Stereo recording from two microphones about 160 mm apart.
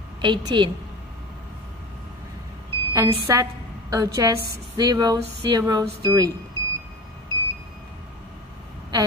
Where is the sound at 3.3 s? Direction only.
20° right (ahead or behind).